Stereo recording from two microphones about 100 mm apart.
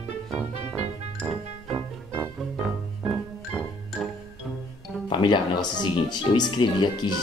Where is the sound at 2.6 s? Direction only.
5° right (ahead or behind).